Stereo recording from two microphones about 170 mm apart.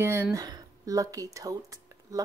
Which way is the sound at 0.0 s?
15° right (ahead or behind).